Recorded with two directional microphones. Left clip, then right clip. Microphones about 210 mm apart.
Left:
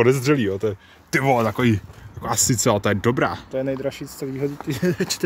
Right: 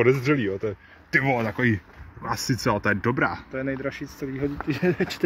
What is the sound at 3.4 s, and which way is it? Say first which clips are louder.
Speech: left 5 dB; 45° left (ahead or behind).